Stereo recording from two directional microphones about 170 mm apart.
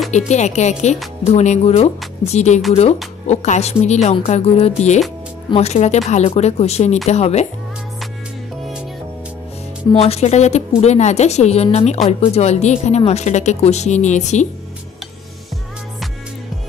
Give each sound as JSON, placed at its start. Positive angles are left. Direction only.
{"t": 0.3, "sound": "speech", "side_deg": 40}
{"t": 9.9, "sound": "a woman's voice", "side_deg": 40}